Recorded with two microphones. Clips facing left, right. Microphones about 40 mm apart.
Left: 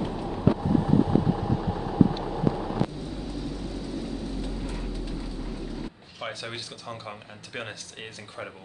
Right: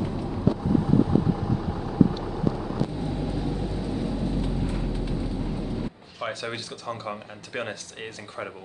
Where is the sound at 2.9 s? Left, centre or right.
Right.